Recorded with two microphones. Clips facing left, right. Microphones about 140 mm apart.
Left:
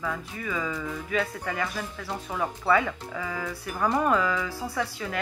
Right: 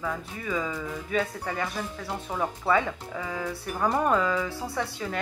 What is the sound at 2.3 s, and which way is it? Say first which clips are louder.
Speech: left 1 dB; 20° right (ahead or behind).